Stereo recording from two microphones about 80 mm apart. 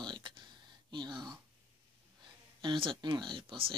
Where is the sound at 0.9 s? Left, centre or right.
Right.